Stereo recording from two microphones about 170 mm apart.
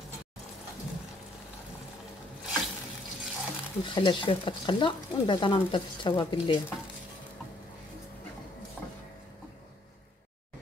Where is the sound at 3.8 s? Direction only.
30° left (ahead or behind).